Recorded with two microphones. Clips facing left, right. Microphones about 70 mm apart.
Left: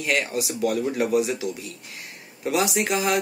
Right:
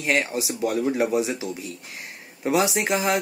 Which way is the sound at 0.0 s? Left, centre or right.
Right.